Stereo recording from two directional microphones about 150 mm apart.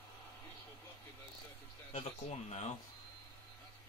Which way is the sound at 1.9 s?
50° left (ahead or behind).